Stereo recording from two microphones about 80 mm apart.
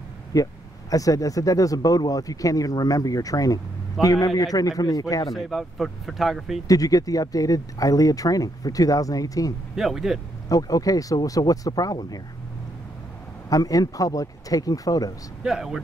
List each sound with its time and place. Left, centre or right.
0.3 s speech: left
5.3 s speech: centre
6.7 s speech: left
9.8 s speech: centre
10.5 s speech: left
13.5 s speech: left
15.4 s speech: centre